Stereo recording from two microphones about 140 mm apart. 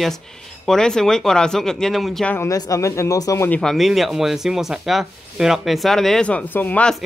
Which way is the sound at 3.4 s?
10° left (ahead or behind).